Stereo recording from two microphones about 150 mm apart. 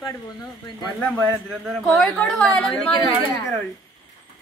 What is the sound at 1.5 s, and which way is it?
A woman's voice, centre (ahead or behind).